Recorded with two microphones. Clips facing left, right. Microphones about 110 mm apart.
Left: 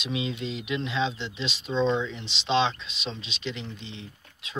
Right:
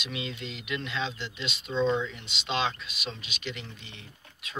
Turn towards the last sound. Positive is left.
turn(degrees=25)  # may be behind; listen again after turning